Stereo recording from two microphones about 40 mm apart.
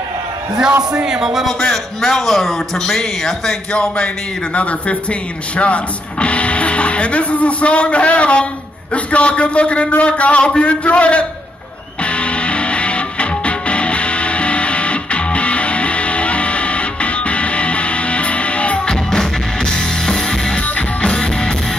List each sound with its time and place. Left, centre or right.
0.6 s speech: centre
1.7 s a man's voice: centre
4.6 s a man's voice: left
12.0 s music: left
18.9 s music: centre